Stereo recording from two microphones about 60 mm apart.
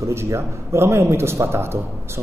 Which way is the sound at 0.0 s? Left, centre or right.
Right.